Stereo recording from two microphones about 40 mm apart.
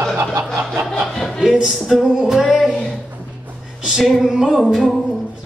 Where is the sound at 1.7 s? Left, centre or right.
Centre.